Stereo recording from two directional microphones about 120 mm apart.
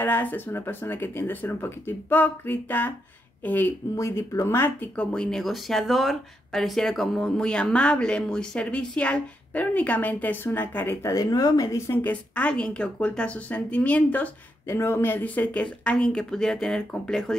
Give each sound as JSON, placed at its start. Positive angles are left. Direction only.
{"t": 0.0, "sound": "speech", "side_deg": 15}
{"t": 3.9, "sound": "speech", "side_deg": 25}
{"t": 11.9, "sound": "speech", "side_deg": 15}